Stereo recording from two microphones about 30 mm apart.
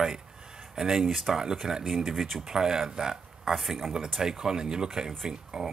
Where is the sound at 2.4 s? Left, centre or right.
Right.